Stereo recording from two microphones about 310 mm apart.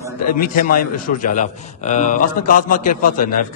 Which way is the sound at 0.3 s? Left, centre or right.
Left.